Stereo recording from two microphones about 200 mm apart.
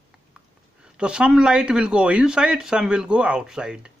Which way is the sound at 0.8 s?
5° right (ahead or behind).